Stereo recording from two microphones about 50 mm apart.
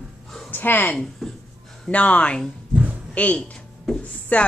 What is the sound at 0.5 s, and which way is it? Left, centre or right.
Speech, left.